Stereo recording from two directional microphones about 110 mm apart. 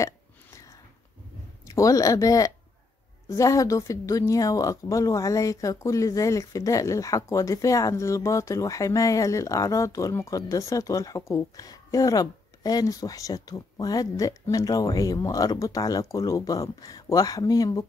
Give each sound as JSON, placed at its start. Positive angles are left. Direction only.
{"t": 1.8, "sound": "speech", "side_deg": 30}